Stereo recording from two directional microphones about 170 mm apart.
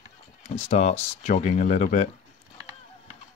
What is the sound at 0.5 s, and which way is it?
Speech, 40° left (ahead or behind).